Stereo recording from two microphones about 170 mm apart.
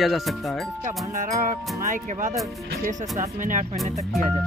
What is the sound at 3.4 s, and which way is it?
Speech, 50° right (ahead or behind).